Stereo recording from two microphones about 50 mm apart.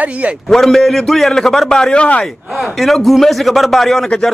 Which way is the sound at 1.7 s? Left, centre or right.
Centre.